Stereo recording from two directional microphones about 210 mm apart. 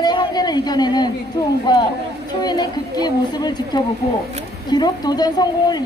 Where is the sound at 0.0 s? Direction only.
20° left (ahead or behind).